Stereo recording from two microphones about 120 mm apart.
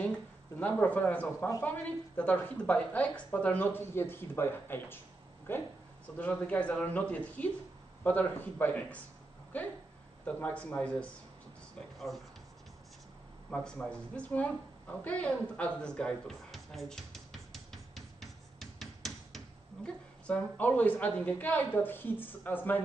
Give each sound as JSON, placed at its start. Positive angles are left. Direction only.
{"t": 0.6, "sound": "speech", "side_deg": 15}
{"t": 10.2, "sound": "speech", "side_deg": 10}
{"t": 12.1, "sound": "speech", "side_deg": 0}
{"t": 13.5, "sound": "a woman's voice", "side_deg": 5}